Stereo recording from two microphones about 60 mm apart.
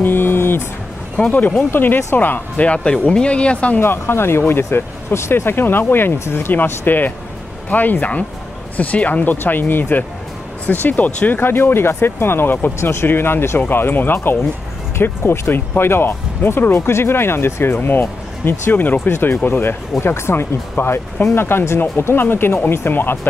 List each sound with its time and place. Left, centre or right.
0.0 s a sound: left
1.3 s speech: left
3.8 s speech: left